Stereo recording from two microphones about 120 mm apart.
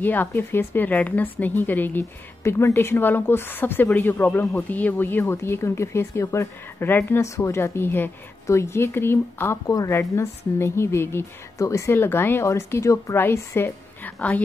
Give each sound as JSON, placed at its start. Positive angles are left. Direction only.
{"t": 0.0, "sound": "a woman's voice", "side_deg": 15}